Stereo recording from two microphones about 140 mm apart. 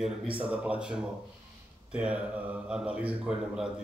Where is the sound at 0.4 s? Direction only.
10° right (ahead or behind).